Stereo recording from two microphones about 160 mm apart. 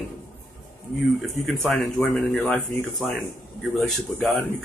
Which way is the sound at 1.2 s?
Centre (ahead or behind).